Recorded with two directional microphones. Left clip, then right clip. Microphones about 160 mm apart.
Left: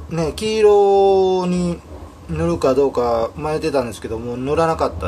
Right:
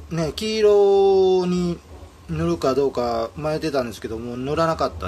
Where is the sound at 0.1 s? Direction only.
35° right (ahead or behind).